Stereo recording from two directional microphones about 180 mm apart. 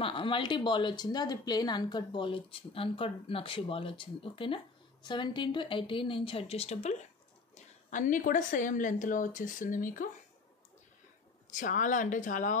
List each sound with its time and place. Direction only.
0.0 s a woman's voice: 30° left (ahead or behind); by 10.0 s 45° left (ahead or behind)
11.5 s speech: 45° left (ahead or behind)